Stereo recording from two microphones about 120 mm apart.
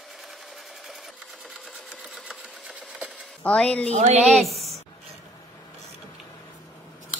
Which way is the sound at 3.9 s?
65° right (ahead or behind).